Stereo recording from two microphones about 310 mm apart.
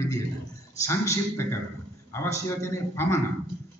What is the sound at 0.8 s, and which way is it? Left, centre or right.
A man's voice, centre.